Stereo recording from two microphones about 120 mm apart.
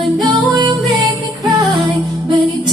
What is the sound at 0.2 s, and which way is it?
Music, 35° right (ahead or behind).